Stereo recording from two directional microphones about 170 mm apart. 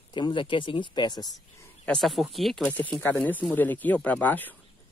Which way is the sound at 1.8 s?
Centre (ahead or behind).